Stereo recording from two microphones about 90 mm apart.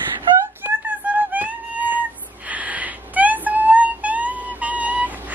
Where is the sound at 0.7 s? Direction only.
20° right (ahead or behind).